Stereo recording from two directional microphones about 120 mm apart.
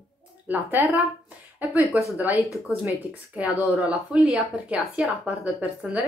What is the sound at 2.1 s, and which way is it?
Speech, 15° right (ahead or behind).